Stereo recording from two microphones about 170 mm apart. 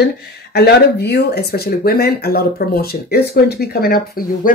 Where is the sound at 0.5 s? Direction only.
70° left (ahead or behind).